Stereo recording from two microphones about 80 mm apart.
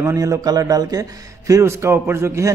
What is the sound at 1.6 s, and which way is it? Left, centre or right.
Speech, right.